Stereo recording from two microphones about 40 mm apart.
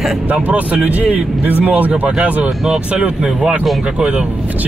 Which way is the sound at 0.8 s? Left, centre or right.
Right.